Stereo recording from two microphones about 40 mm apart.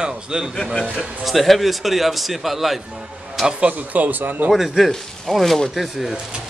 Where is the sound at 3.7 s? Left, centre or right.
Right.